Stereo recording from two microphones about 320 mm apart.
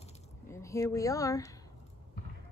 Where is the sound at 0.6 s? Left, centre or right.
Centre.